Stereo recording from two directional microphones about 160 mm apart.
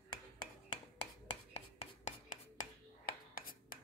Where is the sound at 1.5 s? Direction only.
40° left (ahead or behind).